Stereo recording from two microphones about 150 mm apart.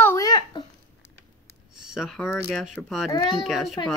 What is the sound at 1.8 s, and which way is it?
Speech, 5° right (ahead or behind).